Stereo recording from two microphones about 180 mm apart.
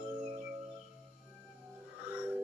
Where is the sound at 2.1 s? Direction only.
10° right (ahead or behind).